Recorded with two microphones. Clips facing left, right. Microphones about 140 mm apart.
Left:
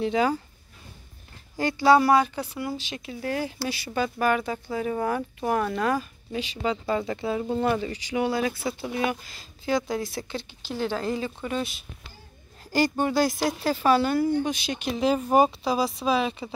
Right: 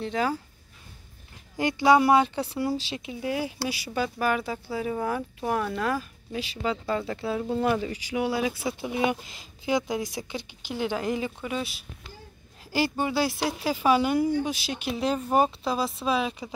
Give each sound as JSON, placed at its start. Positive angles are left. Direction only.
{"t": 0.0, "sound": "speech", "side_deg": 0}
{"t": 1.6, "sound": "speech", "side_deg": -20}
{"t": 3.0, "sound": "speech", "side_deg": -15}
{"t": 11.4, "sound": "speech", "side_deg": -5}
{"t": 15.1, "sound": "speech", "side_deg": 10}